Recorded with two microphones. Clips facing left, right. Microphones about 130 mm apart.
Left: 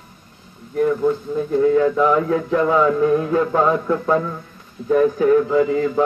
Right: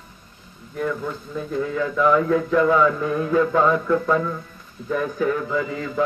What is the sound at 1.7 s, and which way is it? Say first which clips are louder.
Music: left 3 dB; 35° left (ahead or behind).